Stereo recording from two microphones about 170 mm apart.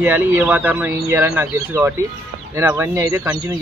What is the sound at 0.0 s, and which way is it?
Speech, 10° right (ahead or behind).